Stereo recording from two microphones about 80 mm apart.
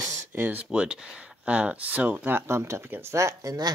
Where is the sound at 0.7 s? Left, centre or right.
Centre; by 3.5 s right.